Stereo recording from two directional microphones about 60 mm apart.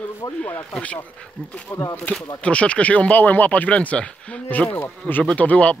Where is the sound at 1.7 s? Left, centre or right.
Left.